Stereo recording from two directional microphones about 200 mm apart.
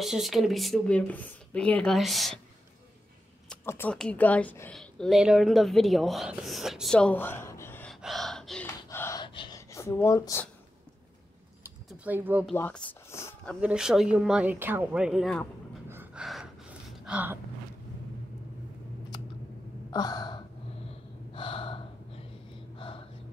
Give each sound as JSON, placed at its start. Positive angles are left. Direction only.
{"t": 0.0, "sound": "speech", "side_deg": 0}
{"t": 3.4, "sound": "a woman's voice", "side_deg": 10}
{"t": 8.8, "sound": "gasp", "side_deg": 15}
{"t": 11.9, "sound": "speech", "side_deg": -5}
{"t": 12.5, "sound": "a sound", "side_deg": 10}
{"t": 13.6, "sound": "speech", "side_deg": -5}
{"t": 15.9, "sound": "gasp", "side_deg": -10}
{"t": 19.9, "sound": "gasp", "side_deg": 20}
{"t": 22.8, "sound": "a sound", "side_deg": 25}